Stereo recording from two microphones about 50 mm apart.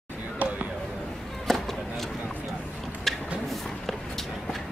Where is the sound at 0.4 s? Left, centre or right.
Right.